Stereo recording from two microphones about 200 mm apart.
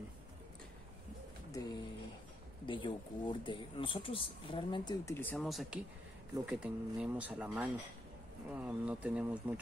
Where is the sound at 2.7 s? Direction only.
25° left (ahead or behind).